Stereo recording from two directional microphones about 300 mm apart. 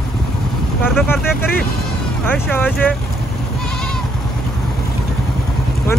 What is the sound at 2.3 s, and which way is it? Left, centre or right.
Speech, centre.